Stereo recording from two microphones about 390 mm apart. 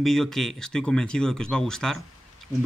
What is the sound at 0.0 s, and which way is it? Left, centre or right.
Speech, centre.